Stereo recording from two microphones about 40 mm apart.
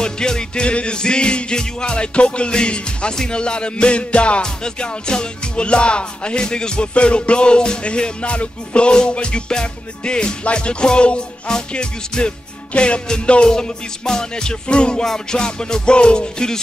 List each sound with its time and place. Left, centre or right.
0.0 s music: centre